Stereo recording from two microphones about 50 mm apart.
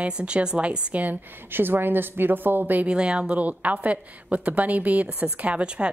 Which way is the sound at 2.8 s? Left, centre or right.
Centre.